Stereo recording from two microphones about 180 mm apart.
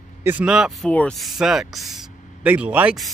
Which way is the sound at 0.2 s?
10° right (ahead or behind).